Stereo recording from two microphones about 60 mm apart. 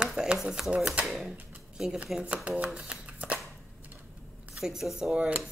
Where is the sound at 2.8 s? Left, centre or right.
Right.